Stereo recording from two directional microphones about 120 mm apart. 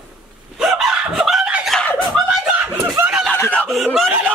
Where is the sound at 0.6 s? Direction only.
Centre (ahead or behind).